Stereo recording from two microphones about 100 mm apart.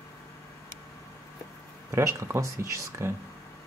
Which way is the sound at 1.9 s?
30° right (ahead or behind).